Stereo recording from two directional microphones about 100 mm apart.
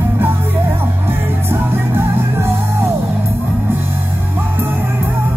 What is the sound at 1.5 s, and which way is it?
Music, 25° right (ahead or behind).